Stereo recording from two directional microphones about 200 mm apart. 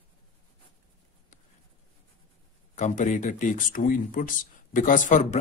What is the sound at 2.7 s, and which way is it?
Speech, 40° left (ahead or behind).